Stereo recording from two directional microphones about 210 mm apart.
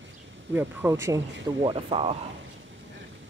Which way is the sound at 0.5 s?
10° right (ahead or behind).